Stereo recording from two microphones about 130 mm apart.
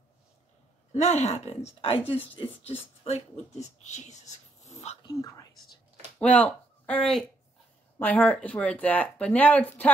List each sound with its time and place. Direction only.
0.9 s speech: 60° left (ahead or behind); by 2.1 s 45° left (ahead or behind)
3.0 s speech: 55° left (ahead or behind)
5.0 s speech: 30° left (ahead or behind)
6.1 s speech: 10° left (ahead or behind)